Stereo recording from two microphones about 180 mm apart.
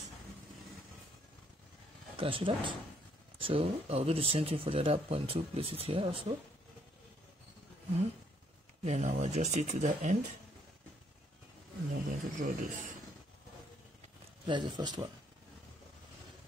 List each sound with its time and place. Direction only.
2.1 s speech: 30° right (ahead or behind)
8.8 s speech: 40° right (ahead or behind)
11.9 s speech: 50° right (ahead or behind)
14.4 s speech: 25° right (ahead or behind)